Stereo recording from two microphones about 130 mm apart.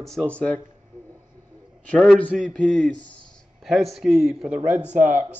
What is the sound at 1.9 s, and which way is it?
A man's voice, centre (ahead or behind).